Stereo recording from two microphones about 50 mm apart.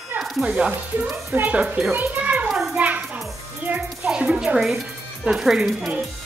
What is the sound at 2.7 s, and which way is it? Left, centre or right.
Child singing, right.